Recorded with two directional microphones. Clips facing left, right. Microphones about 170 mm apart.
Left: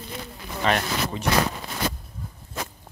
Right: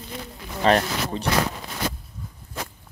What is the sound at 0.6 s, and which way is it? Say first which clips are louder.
Speech: right 4 dB; 35° right (ahead or behind).